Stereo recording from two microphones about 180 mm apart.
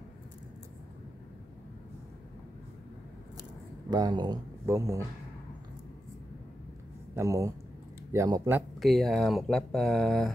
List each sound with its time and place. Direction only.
3.9 s speech: 25° right (ahead or behind)
7.2 s speech: 15° right (ahead or behind)
8.7 s speech: centre (ahead or behind)